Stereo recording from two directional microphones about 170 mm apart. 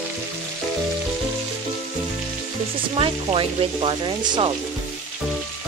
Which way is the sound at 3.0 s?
30° right (ahead or behind).